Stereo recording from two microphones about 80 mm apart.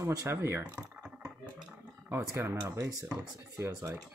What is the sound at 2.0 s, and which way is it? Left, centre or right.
Speech, right.